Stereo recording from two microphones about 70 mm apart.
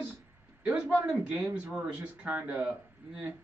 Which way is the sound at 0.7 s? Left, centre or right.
Centre.